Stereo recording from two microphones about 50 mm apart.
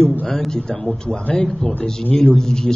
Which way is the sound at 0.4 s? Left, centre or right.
Centre.